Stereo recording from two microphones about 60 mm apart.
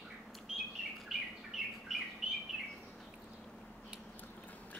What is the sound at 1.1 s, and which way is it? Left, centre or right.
Bird, centre.